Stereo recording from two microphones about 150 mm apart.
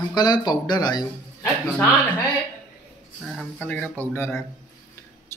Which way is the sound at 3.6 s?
10° left (ahead or behind).